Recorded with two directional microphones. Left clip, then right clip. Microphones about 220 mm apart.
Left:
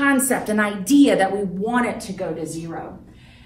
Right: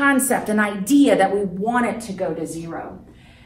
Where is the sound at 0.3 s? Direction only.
10° right (ahead or behind).